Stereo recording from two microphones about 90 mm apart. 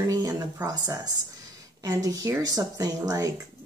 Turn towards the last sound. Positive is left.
turn(degrees=-40)  # may be behind; listen again after turning